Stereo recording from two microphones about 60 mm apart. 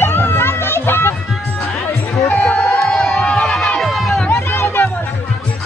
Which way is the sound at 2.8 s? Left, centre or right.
Centre.